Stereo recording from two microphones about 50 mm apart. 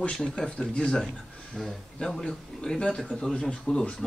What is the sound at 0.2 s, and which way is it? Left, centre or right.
A man's voice, centre.